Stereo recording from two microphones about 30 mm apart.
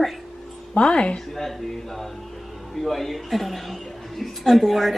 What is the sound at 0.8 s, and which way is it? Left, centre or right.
Speech, left.